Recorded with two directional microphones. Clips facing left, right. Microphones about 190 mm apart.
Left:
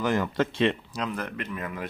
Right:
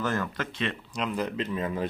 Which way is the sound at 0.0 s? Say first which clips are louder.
Left 3 dB; 15° left (ahead or behind).